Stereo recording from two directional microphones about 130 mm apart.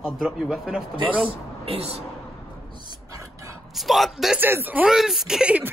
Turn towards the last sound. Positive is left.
turn(degrees=-10)  # may be behind; listen again after turning